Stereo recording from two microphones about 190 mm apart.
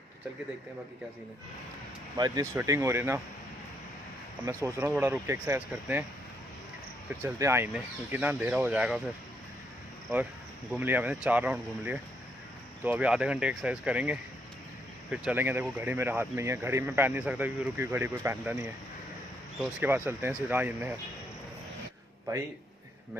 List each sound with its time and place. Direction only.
2.1 s speech: 20° right (ahead or behind)
4.5 s speech: 15° right (ahead or behind)
7.2 s speech: 15° right (ahead or behind)
10.7 s speech: 10° right (ahead or behind)